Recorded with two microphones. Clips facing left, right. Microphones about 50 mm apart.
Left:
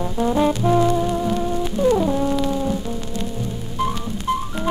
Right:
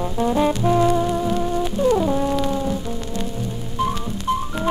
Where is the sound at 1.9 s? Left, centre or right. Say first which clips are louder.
Even; centre.